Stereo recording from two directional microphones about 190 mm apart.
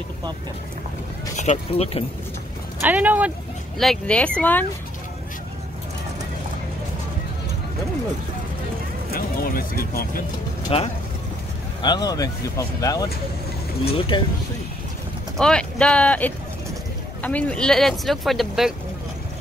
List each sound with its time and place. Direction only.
1.3 s speech: 35° left (ahead or behind)
2.8 s speech: 10° right (ahead or behind)
4.4 s fowl: 10° left (ahead or behind)
9.1 s speech: 50° left (ahead or behind)
10.7 s speech: 30° left (ahead or behind)
15.3 s speech: 5° left (ahead or behind)